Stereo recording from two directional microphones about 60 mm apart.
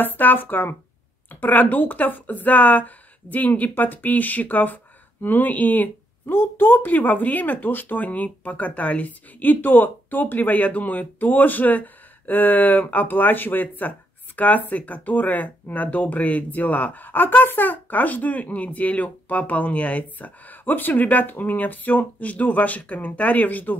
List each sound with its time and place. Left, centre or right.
0.0 s speech: left